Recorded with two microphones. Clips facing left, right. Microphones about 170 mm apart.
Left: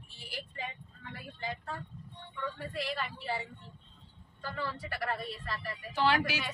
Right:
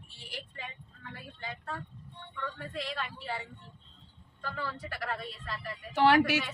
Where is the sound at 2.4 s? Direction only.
5° left (ahead or behind).